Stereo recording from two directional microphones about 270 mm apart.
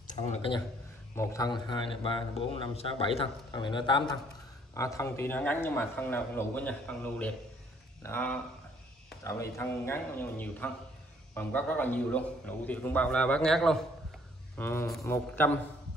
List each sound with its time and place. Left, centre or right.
0.0 s speech: left
1.1 s a man's voice: centre